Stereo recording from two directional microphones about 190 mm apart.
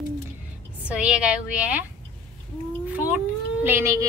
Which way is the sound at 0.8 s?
5° right (ahead or behind).